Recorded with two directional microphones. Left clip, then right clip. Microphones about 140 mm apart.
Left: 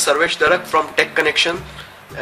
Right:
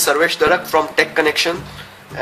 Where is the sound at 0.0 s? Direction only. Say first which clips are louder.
Right 1 dB; 20° right (ahead or behind).